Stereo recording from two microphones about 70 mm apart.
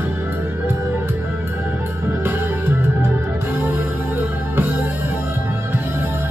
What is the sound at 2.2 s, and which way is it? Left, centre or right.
Music, right.